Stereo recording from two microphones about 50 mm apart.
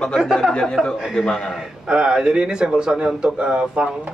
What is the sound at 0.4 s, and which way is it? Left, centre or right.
A man's voice, centre.